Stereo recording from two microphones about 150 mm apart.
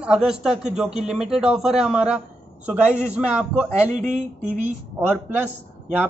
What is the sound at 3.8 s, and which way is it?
Speech, 55° right (ahead or behind).